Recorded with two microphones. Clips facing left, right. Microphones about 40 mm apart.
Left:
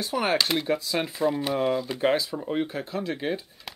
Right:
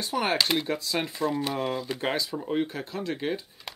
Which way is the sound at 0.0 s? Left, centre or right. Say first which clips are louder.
Left 1 dB; centre.